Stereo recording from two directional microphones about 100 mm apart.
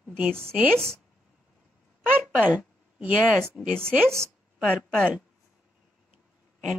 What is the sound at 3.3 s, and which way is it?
A woman's voice, 5° left (ahead or behind).